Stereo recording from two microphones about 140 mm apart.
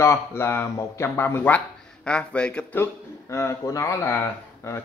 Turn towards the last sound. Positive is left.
turn(degrees=20)  # may be behind; listen again after turning